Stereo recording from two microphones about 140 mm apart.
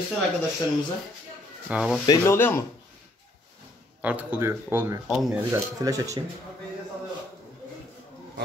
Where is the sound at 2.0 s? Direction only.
25° left (ahead or behind).